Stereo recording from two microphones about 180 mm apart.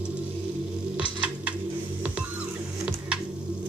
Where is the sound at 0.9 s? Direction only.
5° right (ahead or behind).